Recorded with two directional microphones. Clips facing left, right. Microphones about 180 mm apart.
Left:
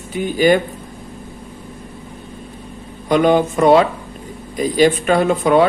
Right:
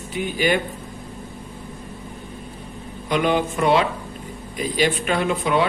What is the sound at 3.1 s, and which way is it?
Speech, 45° left (ahead or behind).